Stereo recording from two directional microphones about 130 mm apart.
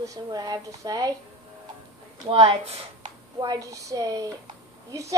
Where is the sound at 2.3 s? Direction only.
45° right (ahead or behind).